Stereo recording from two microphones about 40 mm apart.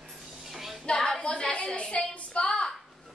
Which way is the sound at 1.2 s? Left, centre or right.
Left.